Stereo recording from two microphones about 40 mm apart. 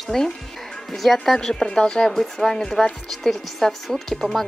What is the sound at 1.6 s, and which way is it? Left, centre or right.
Speech, left.